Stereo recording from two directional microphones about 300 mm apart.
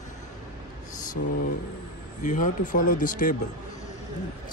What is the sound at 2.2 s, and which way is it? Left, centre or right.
Speech, left.